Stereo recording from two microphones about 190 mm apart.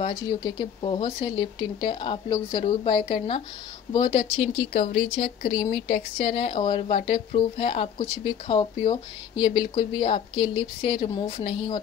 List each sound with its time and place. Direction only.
0.0 s speech: 20° left (ahead or behind)
5.5 s speech: 30° left (ahead or behind)